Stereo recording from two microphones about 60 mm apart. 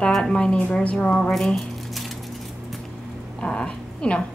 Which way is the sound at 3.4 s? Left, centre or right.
Centre.